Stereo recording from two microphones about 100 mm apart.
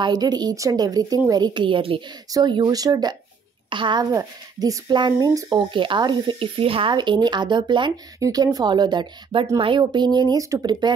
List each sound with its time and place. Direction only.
0.0 s speech: 45° right (ahead or behind)
2.3 s speech: 50° right (ahead or behind)
3.7 s a woman's voice: 55° right (ahead or behind)
4.0 s speech: 40° right (ahead or behind)
8.2 s speech: 40° right (ahead or behind)